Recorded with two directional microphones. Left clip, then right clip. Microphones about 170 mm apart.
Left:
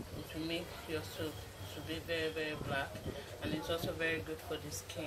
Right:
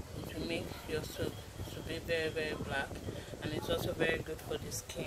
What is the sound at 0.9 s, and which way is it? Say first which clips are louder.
Speech: right 3 dB; 55° right (ahead or behind).